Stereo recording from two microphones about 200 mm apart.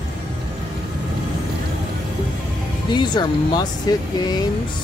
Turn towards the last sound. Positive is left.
turn(degrees=20)  # may be behind; listen again after turning